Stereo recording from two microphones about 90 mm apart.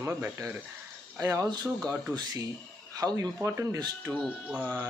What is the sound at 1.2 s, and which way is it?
Speech, 40° right (ahead or behind).